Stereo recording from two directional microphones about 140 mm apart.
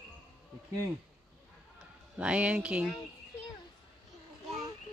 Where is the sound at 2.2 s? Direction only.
10° right (ahead or behind).